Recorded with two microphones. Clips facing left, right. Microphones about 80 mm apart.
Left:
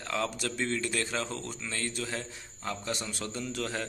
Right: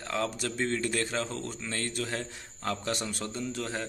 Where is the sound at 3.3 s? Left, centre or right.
Right.